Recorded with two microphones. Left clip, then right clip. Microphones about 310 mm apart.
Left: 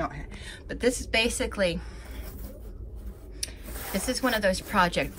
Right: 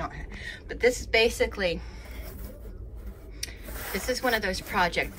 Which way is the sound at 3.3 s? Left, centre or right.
Centre.